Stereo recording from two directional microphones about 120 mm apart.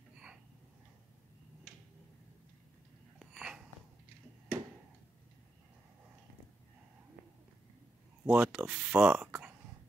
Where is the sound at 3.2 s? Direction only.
5° right (ahead or behind).